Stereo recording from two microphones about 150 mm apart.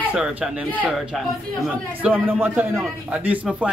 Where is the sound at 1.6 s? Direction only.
10° right (ahead or behind).